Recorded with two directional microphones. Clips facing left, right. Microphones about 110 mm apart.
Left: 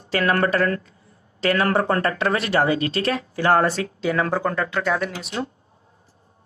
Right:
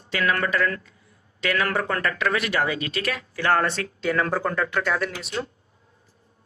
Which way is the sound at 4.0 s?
5° left (ahead or behind).